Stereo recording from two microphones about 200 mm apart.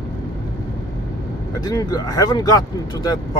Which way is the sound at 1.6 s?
20° left (ahead or behind).